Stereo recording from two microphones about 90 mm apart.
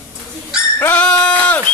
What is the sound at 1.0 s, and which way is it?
Sheep, 15° left (ahead or behind).